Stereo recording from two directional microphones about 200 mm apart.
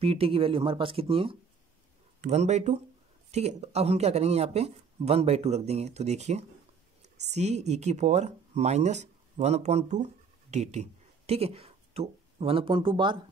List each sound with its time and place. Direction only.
0.0 s speech: 30° right (ahead or behind)